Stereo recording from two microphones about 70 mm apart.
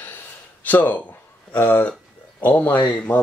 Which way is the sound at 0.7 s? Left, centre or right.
Left.